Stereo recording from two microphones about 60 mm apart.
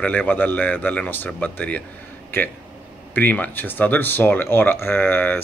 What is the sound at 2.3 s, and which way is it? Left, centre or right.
Speech, left.